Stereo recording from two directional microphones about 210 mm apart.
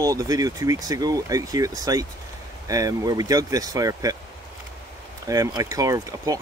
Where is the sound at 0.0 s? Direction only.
15° right (ahead or behind).